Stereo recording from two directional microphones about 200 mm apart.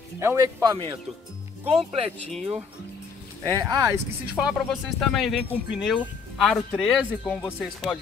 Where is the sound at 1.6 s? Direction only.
30° right (ahead or behind).